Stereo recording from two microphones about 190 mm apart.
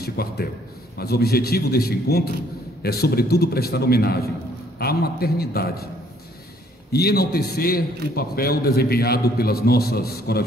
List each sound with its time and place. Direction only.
0.0 s a man's voice: 55° left (ahead or behind)
6.9 s a man's voice: 55° left (ahead or behind)